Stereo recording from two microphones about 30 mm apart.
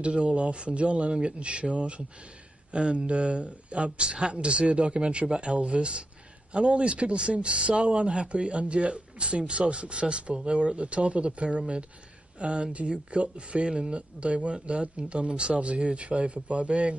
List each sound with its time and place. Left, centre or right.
0.0 s a man's voice: right
2.7 s a man's voice: right
7.5 s a man's voice: right
12.4 s a man's voice: right